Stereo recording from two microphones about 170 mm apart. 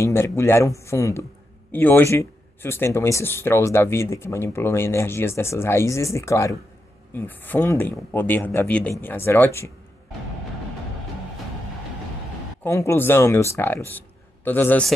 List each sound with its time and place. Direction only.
0.0 s speech: 15° left (ahead or behind)
12.6 s speech: 15° left (ahead or behind)